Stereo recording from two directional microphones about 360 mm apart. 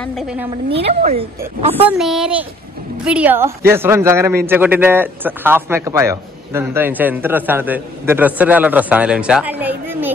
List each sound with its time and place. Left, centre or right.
0.0 s a man's voice: centre
0.7 s speech: centre
1.9 s a man's voice: centre